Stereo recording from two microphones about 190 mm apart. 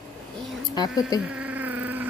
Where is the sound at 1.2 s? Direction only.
10° right (ahead or behind).